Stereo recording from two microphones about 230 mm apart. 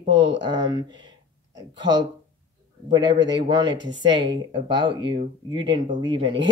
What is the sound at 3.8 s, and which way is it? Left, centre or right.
Speech, right.